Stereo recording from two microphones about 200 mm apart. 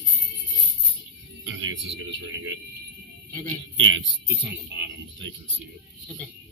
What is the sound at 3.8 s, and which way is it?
Speech, 70° right (ahead or behind).